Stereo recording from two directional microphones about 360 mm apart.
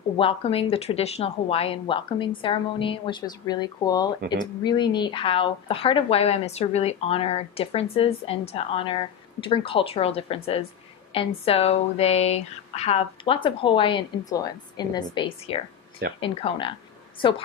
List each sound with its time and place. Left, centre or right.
0.2 s speech: centre